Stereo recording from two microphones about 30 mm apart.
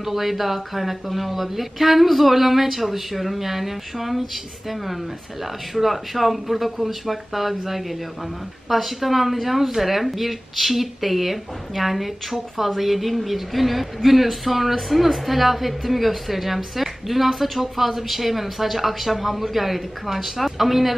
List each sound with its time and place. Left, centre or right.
0.0 s speech: centre
5.8 s speech: centre